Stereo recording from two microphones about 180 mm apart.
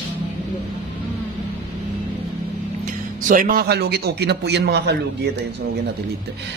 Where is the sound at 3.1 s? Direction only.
45° right (ahead or behind); by 5.5 s 70° right (ahead or behind).